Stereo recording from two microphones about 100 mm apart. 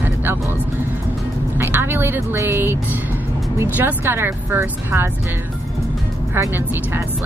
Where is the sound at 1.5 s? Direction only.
20° right (ahead or behind).